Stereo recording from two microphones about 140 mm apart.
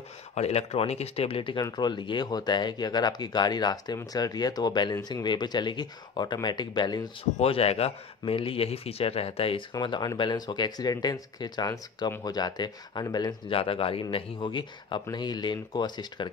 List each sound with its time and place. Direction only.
0.3 s a man's voice: 50° left (ahead or behind); by 7.1 s 30° left (ahead or behind)
7.3 s speech: 45° left (ahead or behind)
9.8 s speech: 30° left (ahead or behind)
13.5 s a man's voice: 40° left (ahead or behind)